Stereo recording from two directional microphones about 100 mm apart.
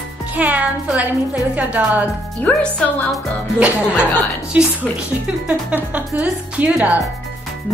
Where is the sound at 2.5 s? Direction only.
10° left (ahead or behind).